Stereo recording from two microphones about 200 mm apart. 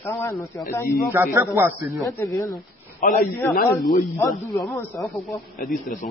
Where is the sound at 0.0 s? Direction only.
15° left (ahead or behind).